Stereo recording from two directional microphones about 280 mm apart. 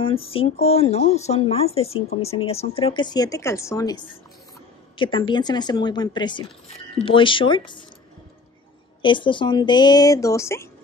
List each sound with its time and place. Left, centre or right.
0.0 s speech: centre
9.0 s speech: centre